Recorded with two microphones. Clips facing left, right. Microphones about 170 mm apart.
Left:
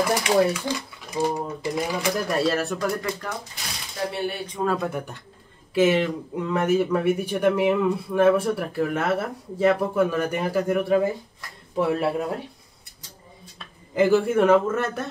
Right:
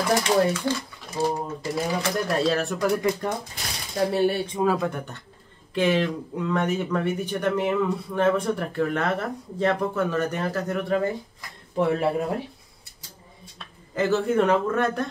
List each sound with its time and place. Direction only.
0.0 s speech: 10° left (ahead or behind)
3.0 s speech: 25° right (ahead or behind)
4.6 s speech: 5° left (ahead or behind)
13.9 s speech: 10° left (ahead or behind)